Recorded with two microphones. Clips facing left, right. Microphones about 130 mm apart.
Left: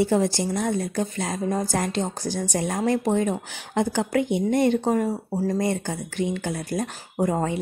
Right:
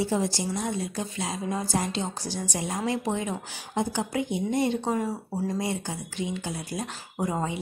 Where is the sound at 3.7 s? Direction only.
70° left (ahead or behind).